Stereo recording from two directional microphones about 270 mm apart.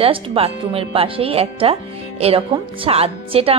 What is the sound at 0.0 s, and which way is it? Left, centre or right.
Speech, right.